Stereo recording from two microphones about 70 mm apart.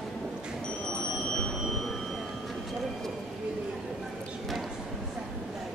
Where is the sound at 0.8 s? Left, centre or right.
Centre.